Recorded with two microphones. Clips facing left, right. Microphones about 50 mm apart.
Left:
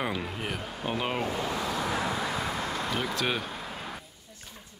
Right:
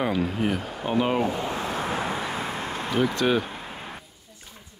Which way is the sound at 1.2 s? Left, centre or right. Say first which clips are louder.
Right 3 dB; right.